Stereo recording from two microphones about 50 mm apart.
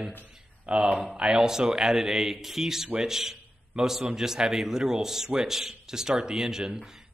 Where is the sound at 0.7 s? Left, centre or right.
Right.